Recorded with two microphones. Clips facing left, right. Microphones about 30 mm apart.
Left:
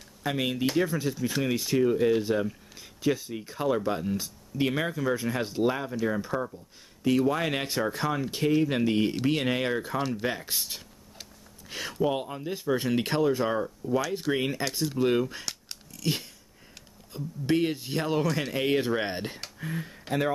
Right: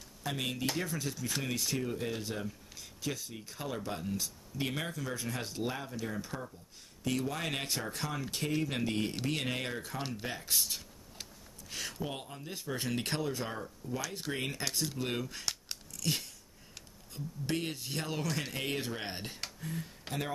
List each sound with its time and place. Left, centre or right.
0.2 s speech: left
16.0 s a sound: centre
17.1 s speech: centre